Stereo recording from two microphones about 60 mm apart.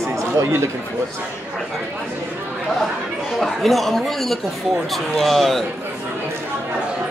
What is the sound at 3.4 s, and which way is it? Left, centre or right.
Speech, centre.